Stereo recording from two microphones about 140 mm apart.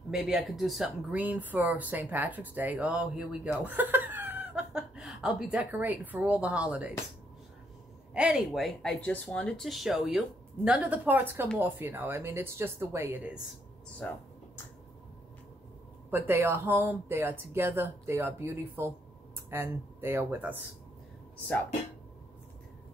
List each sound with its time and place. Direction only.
0.1 s speech: 5° right (ahead or behind)
8.1 s speech: 5° right (ahead or behind)
16.1 s speech: 15° right (ahead or behind)